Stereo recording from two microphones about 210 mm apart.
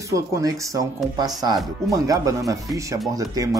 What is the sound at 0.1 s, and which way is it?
Speech, 15° right (ahead or behind).